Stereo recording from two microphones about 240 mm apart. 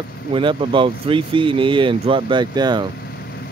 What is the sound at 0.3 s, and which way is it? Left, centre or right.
Speech, right.